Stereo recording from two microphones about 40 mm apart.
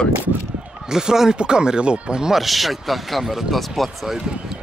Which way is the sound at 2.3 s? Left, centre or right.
Centre.